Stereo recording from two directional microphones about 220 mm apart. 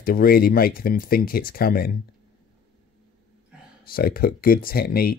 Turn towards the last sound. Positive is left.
turn(degrees=45)  # may be behind; listen again after turning